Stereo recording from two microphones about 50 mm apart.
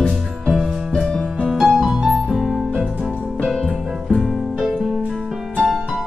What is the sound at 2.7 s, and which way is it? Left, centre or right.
Music, centre.